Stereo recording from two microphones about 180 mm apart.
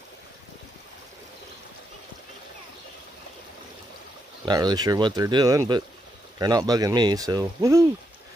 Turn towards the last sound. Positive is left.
turn(degrees=-20)  # may be behind; listen again after turning